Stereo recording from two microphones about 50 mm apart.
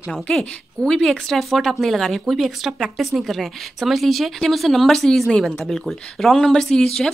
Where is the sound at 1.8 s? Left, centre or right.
Centre.